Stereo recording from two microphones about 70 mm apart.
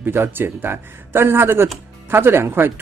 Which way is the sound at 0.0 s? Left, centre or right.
Right.